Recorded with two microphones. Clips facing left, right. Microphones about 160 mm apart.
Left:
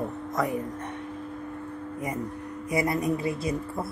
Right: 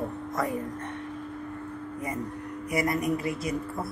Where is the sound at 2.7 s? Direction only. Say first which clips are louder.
Left 1 dB; 25° left (ahead or behind).